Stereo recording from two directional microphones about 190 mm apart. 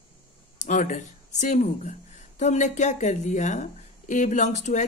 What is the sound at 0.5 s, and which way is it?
Speech, 40° left (ahead or behind).